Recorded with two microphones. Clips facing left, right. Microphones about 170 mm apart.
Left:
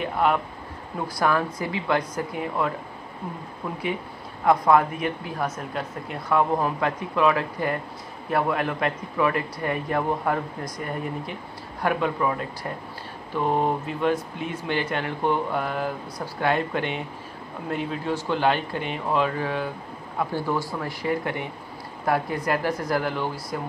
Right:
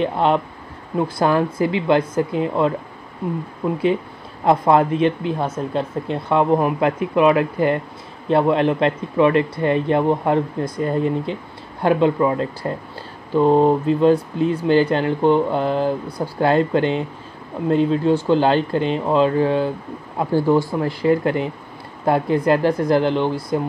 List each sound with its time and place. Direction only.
0.0 s speech: 25° right (ahead or behind)